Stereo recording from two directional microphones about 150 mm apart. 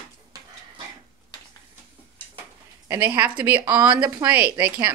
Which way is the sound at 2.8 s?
15° right (ahead or behind).